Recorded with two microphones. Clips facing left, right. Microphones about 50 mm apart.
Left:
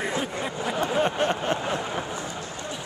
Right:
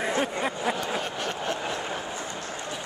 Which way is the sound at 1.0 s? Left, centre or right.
Left.